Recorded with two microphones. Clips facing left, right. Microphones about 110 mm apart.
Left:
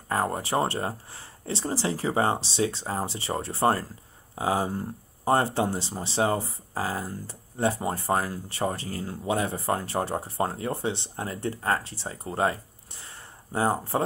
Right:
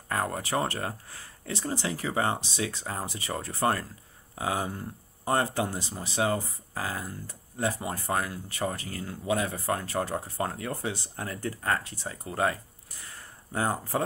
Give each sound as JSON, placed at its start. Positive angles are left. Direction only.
{"t": 0.1, "sound": "speech", "side_deg": 30}